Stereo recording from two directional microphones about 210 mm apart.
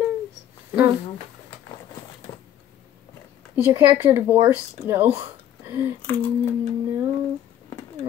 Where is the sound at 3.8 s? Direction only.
10° right (ahead or behind).